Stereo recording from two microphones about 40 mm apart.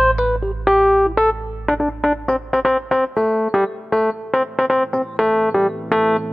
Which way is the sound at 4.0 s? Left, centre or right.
Centre.